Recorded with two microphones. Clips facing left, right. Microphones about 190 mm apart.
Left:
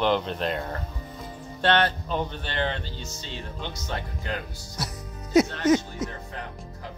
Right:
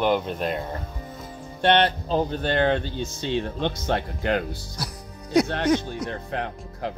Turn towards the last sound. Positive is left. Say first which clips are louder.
# right 8 dB
turn(degrees=-75)  # may be behind; listen again after turning